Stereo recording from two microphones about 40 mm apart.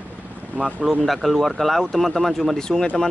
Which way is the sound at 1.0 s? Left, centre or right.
Centre.